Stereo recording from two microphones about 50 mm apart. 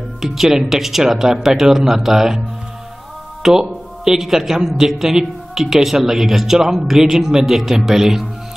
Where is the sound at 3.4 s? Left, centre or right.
Centre.